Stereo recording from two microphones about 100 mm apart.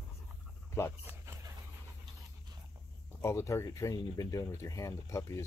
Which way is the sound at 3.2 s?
30° left (ahead or behind).